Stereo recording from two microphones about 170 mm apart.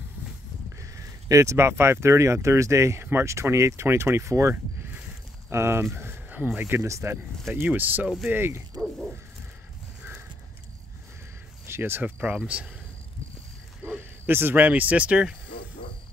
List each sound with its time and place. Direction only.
0.7 s speech: 20° right (ahead or behind)
11.6 s speech: 15° right (ahead or behind)
13.8 s speech: 10° right (ahead or behind)